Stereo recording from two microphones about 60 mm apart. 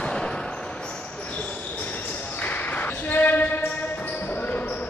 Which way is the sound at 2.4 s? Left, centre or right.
Left.